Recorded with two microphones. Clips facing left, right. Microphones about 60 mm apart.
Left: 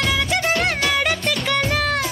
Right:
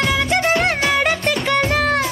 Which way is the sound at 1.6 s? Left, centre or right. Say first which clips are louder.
Right 3 dB; right.